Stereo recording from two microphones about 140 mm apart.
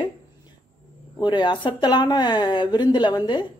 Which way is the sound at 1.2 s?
35° left (ahead or behind).